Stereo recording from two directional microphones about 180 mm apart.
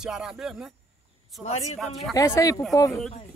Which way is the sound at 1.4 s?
40° left (ahead or behind).